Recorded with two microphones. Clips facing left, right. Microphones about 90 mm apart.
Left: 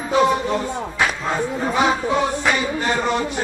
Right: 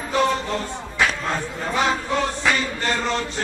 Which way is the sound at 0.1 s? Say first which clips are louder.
Left 4 dB; 15° left (ahead or behind).